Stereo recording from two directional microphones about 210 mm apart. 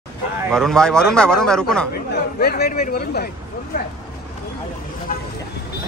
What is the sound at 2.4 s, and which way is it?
Speech, 50° left (ahead or behind).